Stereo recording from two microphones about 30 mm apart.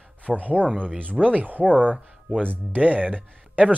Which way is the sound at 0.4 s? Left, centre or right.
Right.